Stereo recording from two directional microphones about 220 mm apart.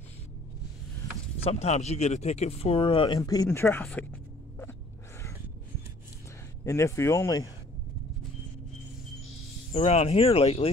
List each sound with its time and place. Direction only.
1.4 s speech: 30° left (ahead or behind); by 4.7 s 10° left (ahead or behind)
6.6 s speech: 15° left (ahead or behind)
9.7 s speech: 30° left (ahead or behind)